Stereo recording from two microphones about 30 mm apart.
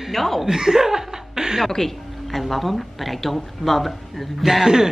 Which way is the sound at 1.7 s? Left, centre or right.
Centre.